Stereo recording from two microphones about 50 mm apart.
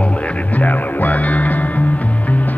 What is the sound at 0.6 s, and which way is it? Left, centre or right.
Music, left.